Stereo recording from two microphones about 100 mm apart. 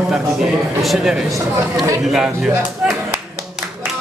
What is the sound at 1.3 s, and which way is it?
Speech, 30° right (ahead or behind).